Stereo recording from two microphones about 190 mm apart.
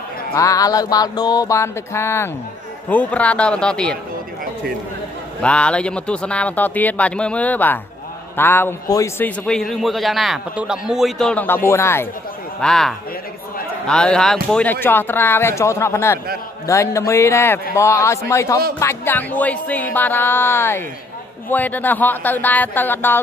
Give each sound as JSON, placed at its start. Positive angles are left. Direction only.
{"t": 0.3, "sound": "music", "side_deg": 15}
{"t": 2.9, "sound": "a man's voice", "side_deg": 10}
{"t": 5.4, "sound": "a man's voice", "side_deg": 5}
{"t": 12.5, "sound": "a man's voice", "side_deg": 5}